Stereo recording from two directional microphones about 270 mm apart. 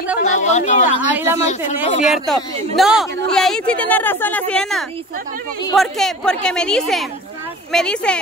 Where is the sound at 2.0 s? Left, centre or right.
Centre.